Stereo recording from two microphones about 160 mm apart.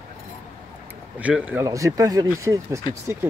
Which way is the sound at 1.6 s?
20° right (ahead or behind).